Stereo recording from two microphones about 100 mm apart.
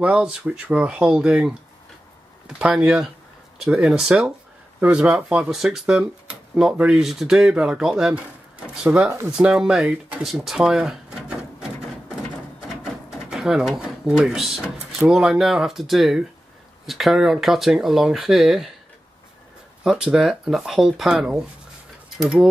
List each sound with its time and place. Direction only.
0.0 s speech: 10° right (ahead or behind)
13.3 s speech: 5° right (ahead or behind)
19.8 s speech: 5° right (ahead or behind)